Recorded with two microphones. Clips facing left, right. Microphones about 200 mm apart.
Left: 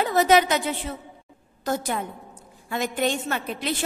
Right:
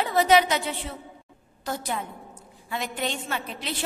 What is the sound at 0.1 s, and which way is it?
Speech, 45° left (ahead or behind).